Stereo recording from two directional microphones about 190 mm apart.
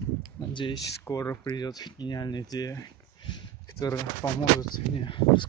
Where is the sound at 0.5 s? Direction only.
25° left (ahead or behind).